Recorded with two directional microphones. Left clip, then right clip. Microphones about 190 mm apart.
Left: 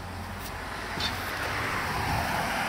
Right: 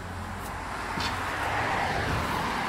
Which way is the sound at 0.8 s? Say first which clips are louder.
Right 1 dB; 40° left (ahead or behind).